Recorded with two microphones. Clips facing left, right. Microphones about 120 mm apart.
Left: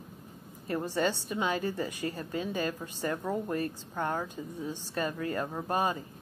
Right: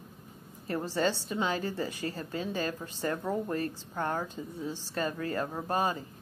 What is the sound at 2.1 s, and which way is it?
A woman's voice, 15° left (ahead or behind).